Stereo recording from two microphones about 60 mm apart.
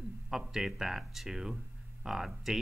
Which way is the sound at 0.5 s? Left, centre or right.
Centre.